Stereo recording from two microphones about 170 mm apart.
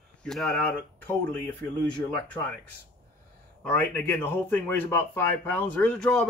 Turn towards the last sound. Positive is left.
turn(degrees=5)  # may be behind; listen again after turning